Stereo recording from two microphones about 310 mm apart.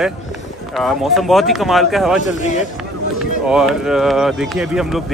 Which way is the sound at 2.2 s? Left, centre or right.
Left.